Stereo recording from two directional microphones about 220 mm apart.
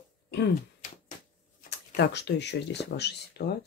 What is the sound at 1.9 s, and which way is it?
Speech, 50° left (ahead or behind).